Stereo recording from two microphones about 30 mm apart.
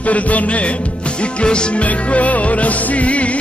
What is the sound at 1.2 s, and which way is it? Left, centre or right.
Music, left.